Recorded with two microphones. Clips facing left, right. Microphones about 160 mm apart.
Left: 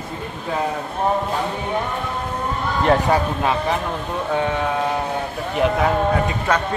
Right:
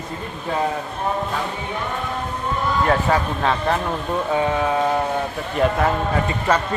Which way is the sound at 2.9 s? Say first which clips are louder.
Left 5 dB; 15° left (ahead or behind).